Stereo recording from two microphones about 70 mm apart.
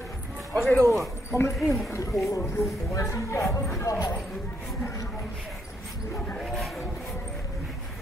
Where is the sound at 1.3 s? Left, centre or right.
Left.